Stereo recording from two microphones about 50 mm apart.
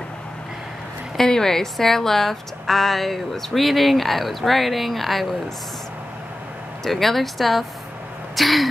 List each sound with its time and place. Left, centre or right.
1.1 s a woman's voice: centre
6.8 s a woman's voice: centre